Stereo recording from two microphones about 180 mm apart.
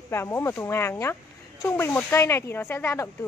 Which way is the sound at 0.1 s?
15° left (ahead or behind).